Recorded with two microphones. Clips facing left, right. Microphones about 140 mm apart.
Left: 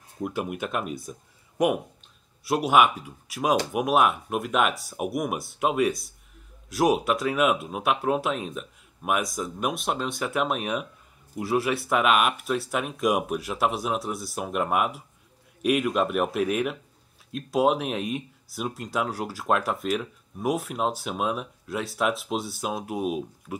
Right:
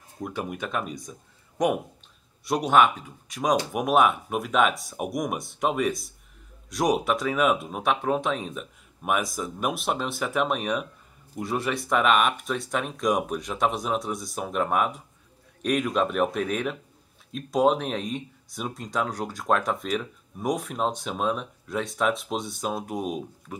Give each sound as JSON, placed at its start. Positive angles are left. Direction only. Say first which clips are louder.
{"t": 0.2, "sound": "speech", "louder": "left 2 dB", "side_deg": 10}